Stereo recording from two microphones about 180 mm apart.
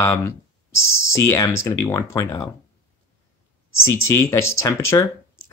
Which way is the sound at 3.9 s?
15° left (ahead or behind).